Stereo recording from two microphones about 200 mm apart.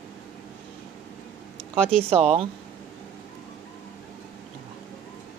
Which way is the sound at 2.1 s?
30° right (ahead or behind).